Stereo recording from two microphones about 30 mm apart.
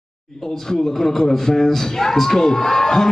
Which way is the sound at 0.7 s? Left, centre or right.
Centre.